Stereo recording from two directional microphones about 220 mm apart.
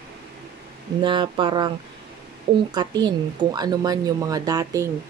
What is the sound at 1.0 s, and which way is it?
Speech, 20° right (ahead or behind).